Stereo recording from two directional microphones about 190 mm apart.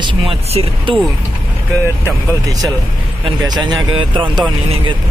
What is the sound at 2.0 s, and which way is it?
Speech, 20° right (ahead or behind).